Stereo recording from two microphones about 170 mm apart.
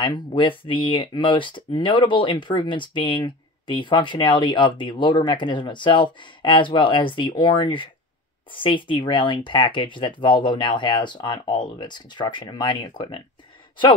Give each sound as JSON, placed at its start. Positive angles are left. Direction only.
{"t": 0.0, "sound": "speech", "side_deg": 30}